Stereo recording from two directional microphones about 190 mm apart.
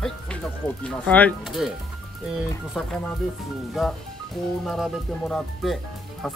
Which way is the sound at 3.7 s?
Centre (ahead or behind).